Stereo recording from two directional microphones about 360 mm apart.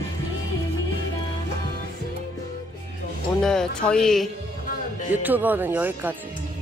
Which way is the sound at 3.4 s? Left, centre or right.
Centre.